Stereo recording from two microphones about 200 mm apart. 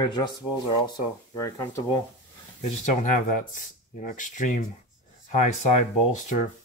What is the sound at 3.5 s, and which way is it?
Speech, 40° left (ahead or behind).